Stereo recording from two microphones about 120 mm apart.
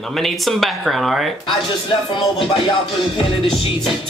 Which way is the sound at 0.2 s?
Centre (ahead or behind).